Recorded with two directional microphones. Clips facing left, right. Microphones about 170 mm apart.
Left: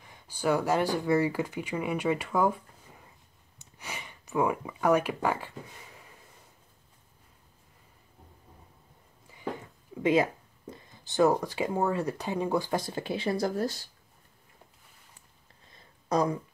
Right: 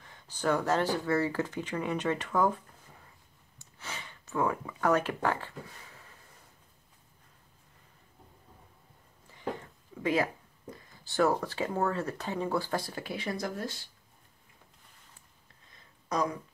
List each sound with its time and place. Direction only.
0.0 s speech: 10° left (ahead or behind)
3.5 s a sound: 15° left (ahead or behind)
10.0 s speech: 20° left (ahead or behind); by 13.8 s 40° left (ahead or behind)
16.1 s speech: 30° left (ahead or behind)